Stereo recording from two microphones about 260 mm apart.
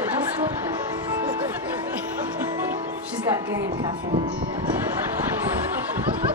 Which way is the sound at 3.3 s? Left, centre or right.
Centre.